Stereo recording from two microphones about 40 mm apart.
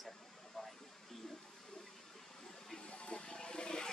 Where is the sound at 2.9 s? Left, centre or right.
Left.